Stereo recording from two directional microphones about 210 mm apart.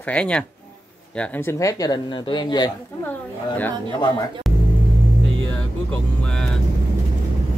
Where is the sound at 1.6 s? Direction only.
15° left (ahead or behind).